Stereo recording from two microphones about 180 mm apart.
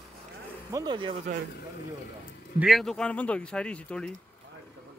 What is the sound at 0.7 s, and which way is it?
Speech, 25° right (ahead or behind).